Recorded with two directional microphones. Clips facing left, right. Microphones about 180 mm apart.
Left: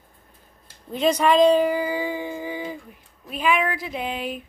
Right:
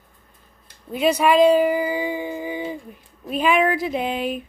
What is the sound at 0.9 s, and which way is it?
Speech, 10° right (ahead or behind).